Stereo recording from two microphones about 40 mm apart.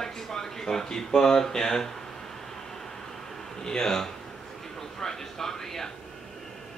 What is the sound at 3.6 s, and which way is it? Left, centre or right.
Speech, centre.